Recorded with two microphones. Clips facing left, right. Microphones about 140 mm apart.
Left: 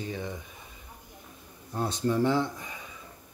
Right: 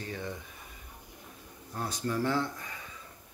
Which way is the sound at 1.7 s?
25° left (ahead or behind).